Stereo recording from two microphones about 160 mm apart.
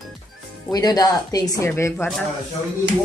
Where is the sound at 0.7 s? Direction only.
25° left (ahead or behind).